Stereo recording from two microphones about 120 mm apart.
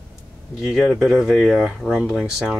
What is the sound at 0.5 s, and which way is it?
Speech, 5° right (ahead or behind).